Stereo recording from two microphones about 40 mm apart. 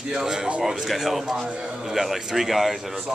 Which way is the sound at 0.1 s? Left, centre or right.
Centre.